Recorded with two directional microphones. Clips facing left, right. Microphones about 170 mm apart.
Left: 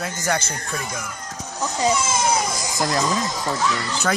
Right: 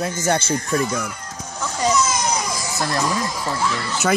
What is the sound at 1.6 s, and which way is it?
Children playing, 25° left (ahead or behind).